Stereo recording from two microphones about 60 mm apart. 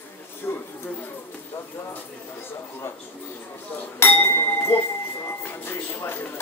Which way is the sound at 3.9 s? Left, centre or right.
Left.